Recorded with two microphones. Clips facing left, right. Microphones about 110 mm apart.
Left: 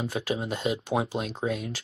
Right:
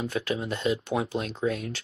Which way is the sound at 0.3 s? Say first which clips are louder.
Right 1 dB; 20° left (ahead or behind).